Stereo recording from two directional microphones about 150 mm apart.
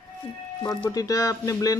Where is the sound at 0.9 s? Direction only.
25° left (ahead or behind).